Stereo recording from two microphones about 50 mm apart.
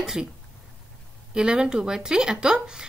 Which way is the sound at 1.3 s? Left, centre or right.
Centre.